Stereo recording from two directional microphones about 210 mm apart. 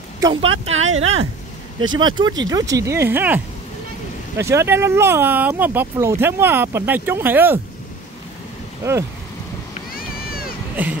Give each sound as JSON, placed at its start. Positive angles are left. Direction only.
{"t": 0.2, "sound": "speech", "side_deg": -25}
{"t": 0.5, "sound": "speech", "side_deg": -70}
{"t": 2.0, "sound": "speech", "side_deg": -20}
{"t": 8.8, "sound": "speech", "side_deg": -15}
{"t": 9.9, "sound": "cat", "side_deg": 45}
{"t": 10.8, "sound": "speech", "side_deg": -10}